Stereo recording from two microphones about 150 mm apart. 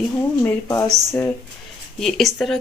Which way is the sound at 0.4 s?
15° left (ahead or behind).